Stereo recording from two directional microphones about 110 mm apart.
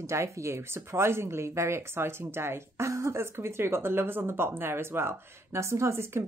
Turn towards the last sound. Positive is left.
turn(degrees=-25)  # may be behind; listen again after turning